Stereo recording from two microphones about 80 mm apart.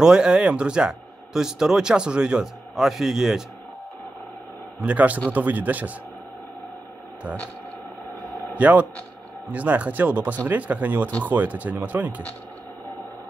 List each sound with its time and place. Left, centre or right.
0.0 s speech: centre
4.7 s speech: centre
8.5 s speech: centre